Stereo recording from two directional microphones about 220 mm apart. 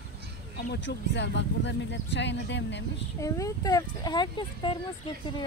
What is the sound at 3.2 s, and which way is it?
Speech, 15° left (ahead or behind).